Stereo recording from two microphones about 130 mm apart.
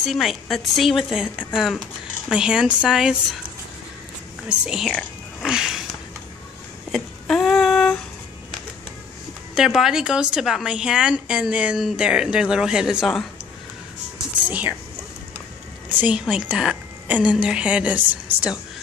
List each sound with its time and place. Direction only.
0.0 s a woman's voice: centre (ahead or behind)
4.5 s a woman's voice: 5° right (ahead or behind)
5.4 s a sound: 5° right (ahead or behind)
6.9 s a sound: centre (ahead or behind)
9.6 s a woman's voice: 5° right (ahead or behind)
14.5 s speech: 10° right (ahead or behind)
15.9 s a woman's voice: 10° right (ahead or behind)